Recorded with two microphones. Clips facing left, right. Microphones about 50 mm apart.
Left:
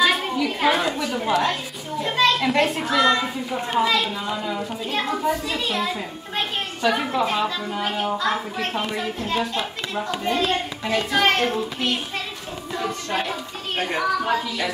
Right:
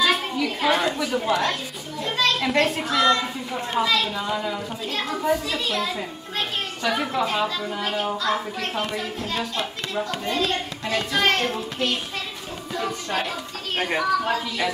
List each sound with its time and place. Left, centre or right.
0.0 s children playing: centre
2.0 s a child's voice: centre
2.9 s a woman's voice: centre
4.1 s a woman's voice: centre
10.0 s a child's voice: left
12.7 s speech: centre
13.7 s speech: centre